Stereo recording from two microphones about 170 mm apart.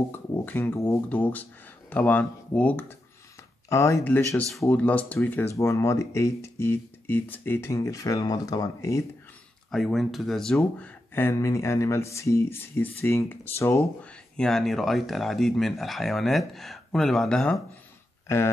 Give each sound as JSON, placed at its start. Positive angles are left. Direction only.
{"t": 0.3, "sound": "speech", "side_deg": 10}
{"t": 9.7, "sound": "speech", "side_deg": 0}